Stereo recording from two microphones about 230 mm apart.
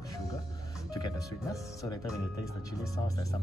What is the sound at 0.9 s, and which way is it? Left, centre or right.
Speech, centre.